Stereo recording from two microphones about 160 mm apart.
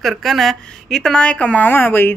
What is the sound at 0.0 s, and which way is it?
A woman's voice, centre (ahead or behind).